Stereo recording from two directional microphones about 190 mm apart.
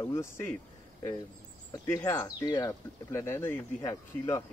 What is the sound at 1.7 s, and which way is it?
Speech, 15° left (ahead or behind).